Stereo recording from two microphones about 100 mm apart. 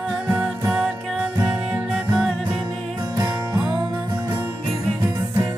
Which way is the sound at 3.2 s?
25° right (ahead or behind).